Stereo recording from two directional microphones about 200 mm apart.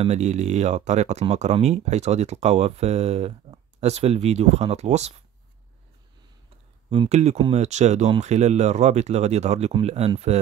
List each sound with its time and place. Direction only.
0.0 s speech: 35° right (ahead or behind)
6.9 s speech: 30° right (ahead or behind)